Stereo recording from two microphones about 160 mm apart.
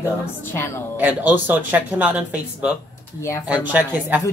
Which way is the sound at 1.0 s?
10° right (ahead or behind).